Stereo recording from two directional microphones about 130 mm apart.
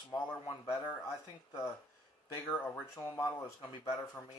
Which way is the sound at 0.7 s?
20° left (ahead or behind).